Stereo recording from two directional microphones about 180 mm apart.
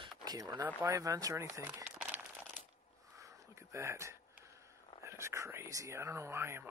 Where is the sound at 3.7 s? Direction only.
15° right (ahead or behind).